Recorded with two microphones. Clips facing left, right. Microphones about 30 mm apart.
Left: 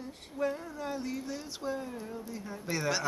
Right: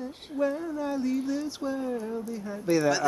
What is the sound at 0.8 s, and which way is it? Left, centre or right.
Speech, centre.